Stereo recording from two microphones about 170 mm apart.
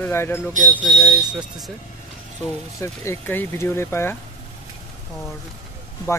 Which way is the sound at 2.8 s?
15° left (ahead or behind).